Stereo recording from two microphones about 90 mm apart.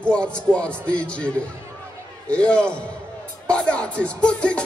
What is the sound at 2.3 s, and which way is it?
Music, 10° left (ahead or behind).